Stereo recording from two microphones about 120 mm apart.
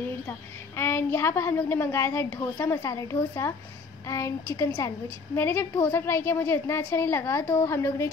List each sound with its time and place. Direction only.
0.7 s a woman's voice: 20° left (ahead or behind)